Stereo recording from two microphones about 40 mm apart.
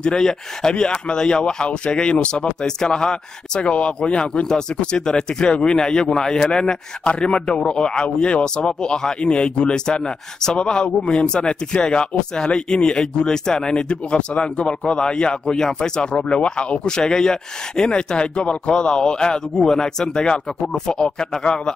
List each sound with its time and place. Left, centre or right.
0.0 s speech: centre
11.0 s a man's voice: left; by 21.7 s centre